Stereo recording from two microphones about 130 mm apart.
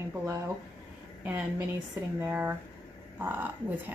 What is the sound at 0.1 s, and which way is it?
Speech, 20° right (ahead or behind).